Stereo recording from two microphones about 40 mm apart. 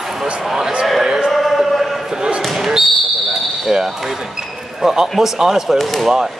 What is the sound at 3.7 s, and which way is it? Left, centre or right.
Speech, centre.